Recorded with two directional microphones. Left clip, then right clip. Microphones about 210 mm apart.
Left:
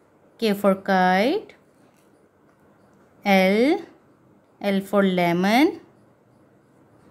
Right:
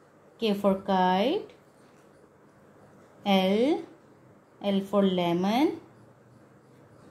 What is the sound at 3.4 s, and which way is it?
A woman's voice, 35° left (ahead or behind).